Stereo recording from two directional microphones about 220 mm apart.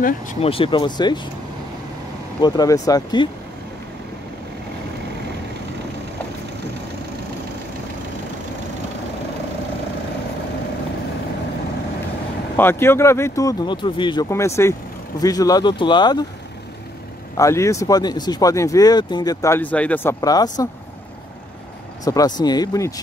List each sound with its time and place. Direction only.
0.0 s speech: 30° left (ahead or behind)
2.4 s speech: 20° left (ahead or behind)
12.5 s speech: 10° left (ahead or behind)
17.4 s speech: 15° left (ahead or behind)
22.0 s speech: 15° left (ahead or behind)